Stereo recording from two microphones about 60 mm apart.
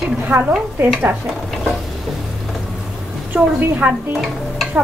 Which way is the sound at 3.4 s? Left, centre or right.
Right.